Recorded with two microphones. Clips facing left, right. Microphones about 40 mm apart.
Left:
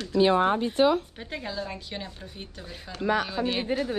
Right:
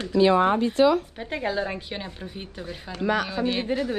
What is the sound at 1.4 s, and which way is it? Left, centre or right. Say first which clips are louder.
Speech: right 8 dB; right.